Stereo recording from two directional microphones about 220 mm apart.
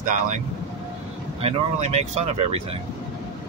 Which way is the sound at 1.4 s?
30° right (ahead or behind).